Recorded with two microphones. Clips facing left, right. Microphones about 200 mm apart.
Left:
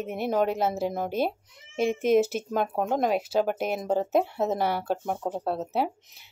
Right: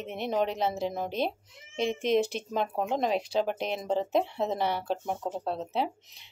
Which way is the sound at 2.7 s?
40° left (ahead or behind).